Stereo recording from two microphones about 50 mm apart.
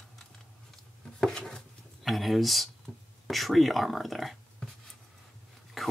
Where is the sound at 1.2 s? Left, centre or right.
Centre.